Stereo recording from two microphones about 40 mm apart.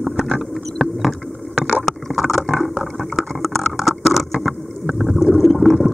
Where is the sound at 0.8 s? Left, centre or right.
Centre.